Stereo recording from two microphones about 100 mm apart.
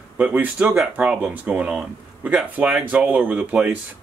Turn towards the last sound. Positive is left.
turn(degrees=-15)  # may be behind; listen again after turning